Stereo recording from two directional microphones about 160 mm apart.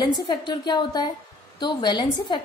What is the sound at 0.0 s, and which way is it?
A woman's voice, 25° left (ahead or behind).